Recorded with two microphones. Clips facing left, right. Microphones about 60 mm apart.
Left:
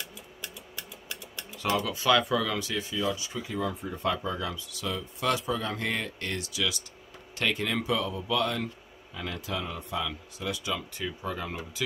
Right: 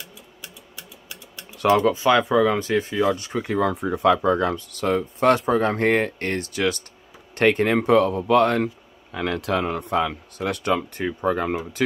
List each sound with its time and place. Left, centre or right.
1.6 s speech: right
2.0 s speech: right